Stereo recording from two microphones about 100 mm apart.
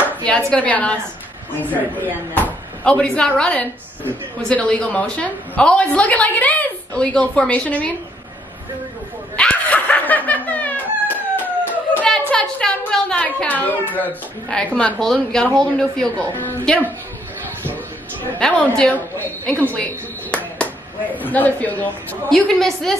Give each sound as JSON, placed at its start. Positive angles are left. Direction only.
{"t": 0.1, "sound": "a sound", "side_deg": 10}
{"t": 0.5, "sound": "a woman's voice", "side_deg": 15}
{"t": 1.6, "sound": "a woman's voice", "side_deg": -15}
{"t": 2.8, "sound": "a woman's voice", "side_deg": 10}
{"t": 9.4, "sound": "dog", "side_deg": 15}
{"t": 11.4, "sound": "a sound", "side_deg": 15}
{"t": 12.1, "sound": "a woman's voice", "side_deg": 10}
{"t": 15.5, "sound": "a woman's voice", "side_deg": 5}
{"t": 18.4, "sound": "a woman's voice", "side_deg": 10}
{"t": 22.3, "sound": "a woman's voice", "side_deg": 5}